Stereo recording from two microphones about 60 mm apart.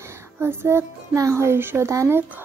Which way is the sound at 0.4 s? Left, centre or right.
Right.